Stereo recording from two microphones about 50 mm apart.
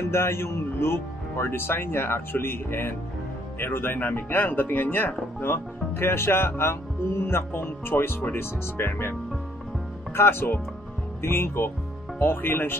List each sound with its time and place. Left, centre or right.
0.1 s speech: left
5.4 s speech: left
10.1 s speech: left
12.2 s speech: left